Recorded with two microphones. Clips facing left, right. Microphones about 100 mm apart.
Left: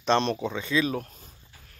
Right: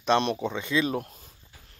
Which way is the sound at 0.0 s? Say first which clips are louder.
Even; 10° right (ahead or behind).